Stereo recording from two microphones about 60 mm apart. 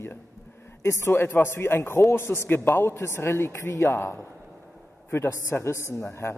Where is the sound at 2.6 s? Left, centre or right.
Left.